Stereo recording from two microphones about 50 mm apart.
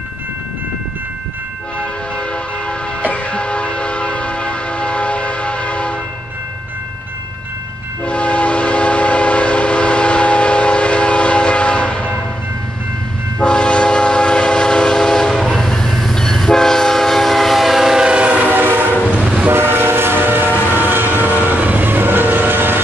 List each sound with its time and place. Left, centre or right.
3.0 s a sound: left
8.0 s train: left
13.4 s train: centre
18.0 s train: right
18.5 s train: right
19.2 s train: right
19.5 s train: right
20.9 s vehicle: right